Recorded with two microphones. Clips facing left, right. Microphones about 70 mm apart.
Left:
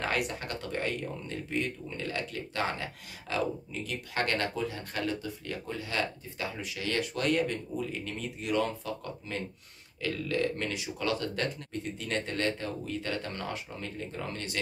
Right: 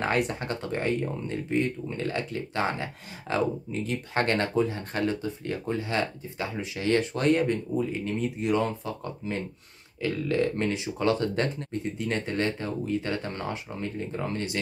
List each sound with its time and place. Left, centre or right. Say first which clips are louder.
0.0 s speech: right 5 dB; right